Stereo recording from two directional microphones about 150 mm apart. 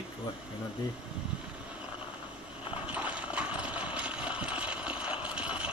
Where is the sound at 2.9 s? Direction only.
10° right (ahead or behind).